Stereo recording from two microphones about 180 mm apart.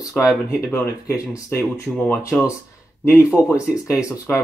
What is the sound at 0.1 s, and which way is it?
Speech, centre (ahead or behind).